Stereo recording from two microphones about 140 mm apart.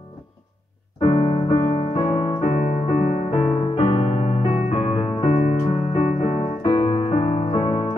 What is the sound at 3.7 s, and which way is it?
Piano, 45° left (ahead or behind).